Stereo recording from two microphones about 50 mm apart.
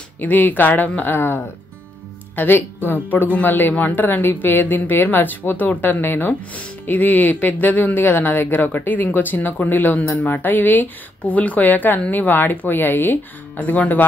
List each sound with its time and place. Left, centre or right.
0.2 s speech: left
1.1 s speech: left
13.6 s speech: left